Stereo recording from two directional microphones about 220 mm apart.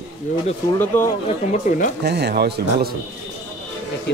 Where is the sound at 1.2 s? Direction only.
35° left (ahead or behind).